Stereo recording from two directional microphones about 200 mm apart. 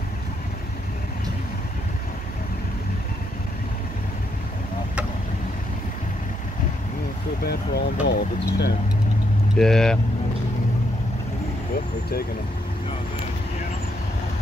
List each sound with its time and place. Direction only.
7.4 s speech: 55° left (ahead or behind)
9.6 s speech: centre (ahead or behind)